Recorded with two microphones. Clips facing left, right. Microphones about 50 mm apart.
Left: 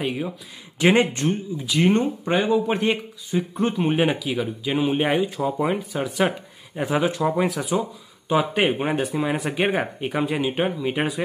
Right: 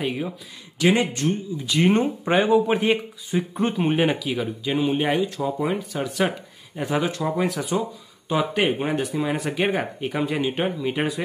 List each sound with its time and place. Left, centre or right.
0.0 s speech: centre
0.7 s speech: left
1.7 s speech: centre